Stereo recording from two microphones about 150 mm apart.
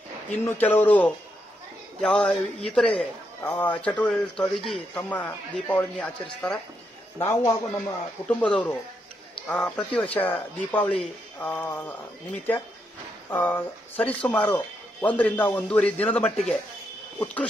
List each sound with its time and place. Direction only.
0.5 s a man's voice: 10° left (ahead or behind)
7.2 s a man's voice: 20° left (ahead or behind)
13.3 s a man's voice: 15° left (ahead or behind)